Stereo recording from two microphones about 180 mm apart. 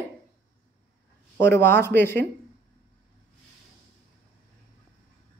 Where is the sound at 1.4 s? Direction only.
15° left (ahead or behind).